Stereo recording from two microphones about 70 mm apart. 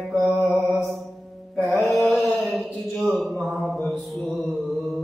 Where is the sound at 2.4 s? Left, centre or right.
Right.